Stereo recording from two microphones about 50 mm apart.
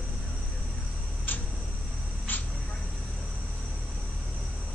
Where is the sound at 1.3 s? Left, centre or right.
Left.